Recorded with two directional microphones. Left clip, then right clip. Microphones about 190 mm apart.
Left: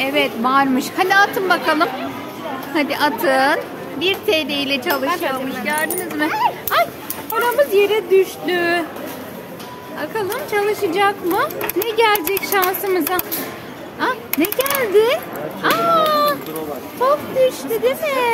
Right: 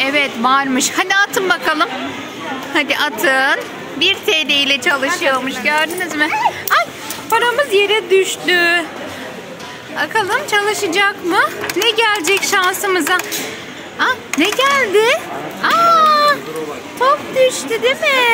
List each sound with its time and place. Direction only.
0.0 s a woman's voice: centre (ahead or behind)
6.1 s a woman's voice: 10° left (ahead or behind)
9.9 s a woman's voice: centre (ahead or behind)
16.1 s cat: 10° left (ahead or behind)
17.0 s a woman's voice: 5° left (ahead or behind)